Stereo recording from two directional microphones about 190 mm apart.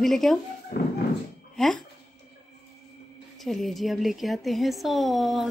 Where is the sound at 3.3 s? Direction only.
Centre (ahead or behind).